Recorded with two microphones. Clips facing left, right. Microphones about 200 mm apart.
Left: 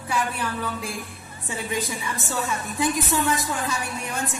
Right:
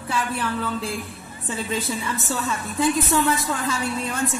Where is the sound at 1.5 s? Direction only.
15° left (ahead or behind).